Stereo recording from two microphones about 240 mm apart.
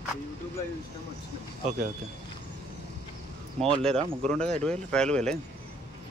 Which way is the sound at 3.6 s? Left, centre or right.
Centre.